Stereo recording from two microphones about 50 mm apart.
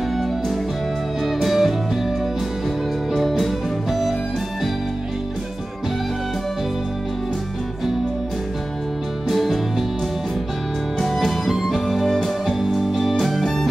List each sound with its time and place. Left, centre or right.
1.2 s music: centre
3.1 s music: centre
9.3 s music: centre
11.0 s music: centre